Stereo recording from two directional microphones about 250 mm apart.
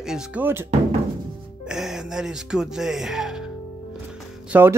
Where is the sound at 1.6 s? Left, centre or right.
Centre.